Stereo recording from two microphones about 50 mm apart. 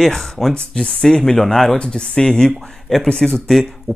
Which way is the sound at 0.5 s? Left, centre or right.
Centre.